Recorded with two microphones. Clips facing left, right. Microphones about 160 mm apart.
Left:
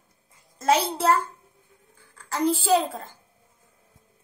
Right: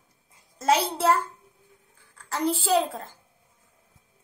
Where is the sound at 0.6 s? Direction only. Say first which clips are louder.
Left 1 dB; centre (ahead or behind).